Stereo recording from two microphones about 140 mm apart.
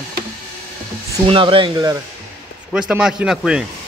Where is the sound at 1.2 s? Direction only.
40° right (ahead or behind).